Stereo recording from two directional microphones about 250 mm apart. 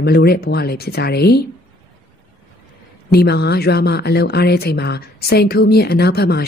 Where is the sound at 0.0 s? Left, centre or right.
Left.